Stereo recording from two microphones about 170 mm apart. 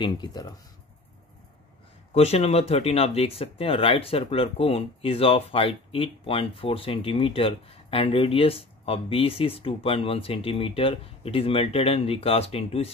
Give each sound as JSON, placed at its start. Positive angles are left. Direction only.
{"t": 0.0, "sound": "speech", "side_deg": 25}
{"t": 2.1, "sound": "speech", "side_deg": 35}